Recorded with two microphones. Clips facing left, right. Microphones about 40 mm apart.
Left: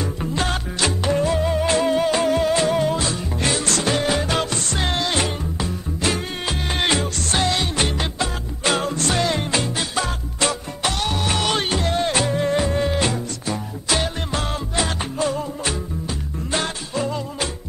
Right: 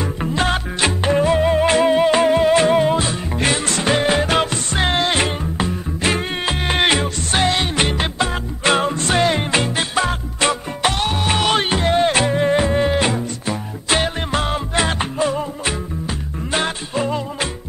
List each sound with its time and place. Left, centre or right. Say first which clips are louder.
0.0 s music: right 4 dB; right